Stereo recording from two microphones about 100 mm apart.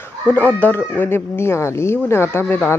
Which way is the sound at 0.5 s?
15° left (ahead or behind).